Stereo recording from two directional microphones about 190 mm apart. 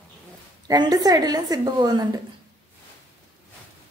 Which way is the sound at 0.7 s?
20° right (ahead or behind).